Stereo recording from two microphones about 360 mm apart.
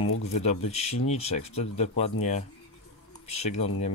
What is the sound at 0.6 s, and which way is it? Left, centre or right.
Speech, centre.